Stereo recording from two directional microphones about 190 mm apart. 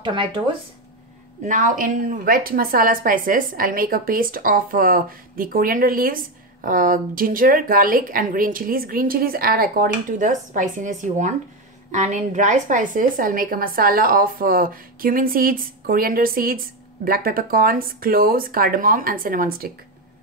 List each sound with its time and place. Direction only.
0.0 s speech: 25° right (ahead or behind)
1.4 s a woman's voice: 40° right (ahead or behind)